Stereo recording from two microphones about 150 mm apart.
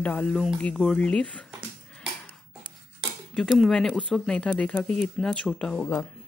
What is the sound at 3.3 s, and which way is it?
Speech, 5° left (ahead or behind).